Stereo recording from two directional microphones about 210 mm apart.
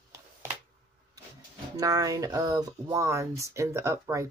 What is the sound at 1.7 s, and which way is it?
Speech, 15° right (ahead or behind).